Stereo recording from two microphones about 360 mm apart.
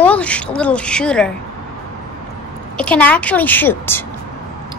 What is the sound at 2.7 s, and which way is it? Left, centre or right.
A woman's voice, centre.